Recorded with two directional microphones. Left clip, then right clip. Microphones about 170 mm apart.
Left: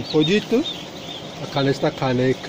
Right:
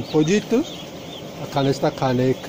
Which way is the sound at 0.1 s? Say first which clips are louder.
Left 1 dB; 5° right (ahead or behind).